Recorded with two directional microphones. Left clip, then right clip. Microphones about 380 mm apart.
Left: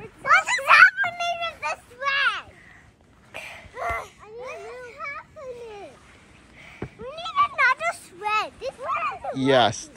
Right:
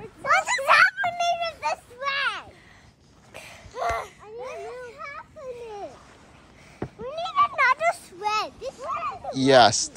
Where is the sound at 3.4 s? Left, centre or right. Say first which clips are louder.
Right 1 dB; centre.